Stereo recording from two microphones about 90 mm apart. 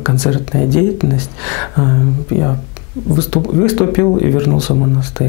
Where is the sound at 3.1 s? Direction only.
10° left (ahead or behind).